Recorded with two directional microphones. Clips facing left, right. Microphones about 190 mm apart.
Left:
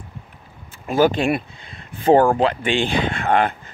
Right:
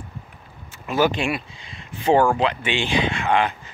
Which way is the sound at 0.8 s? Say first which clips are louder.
Left 4 dB; 45° left (ahead or behind).